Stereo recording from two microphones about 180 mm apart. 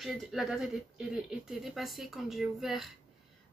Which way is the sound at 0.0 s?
Centre (ahead or behind).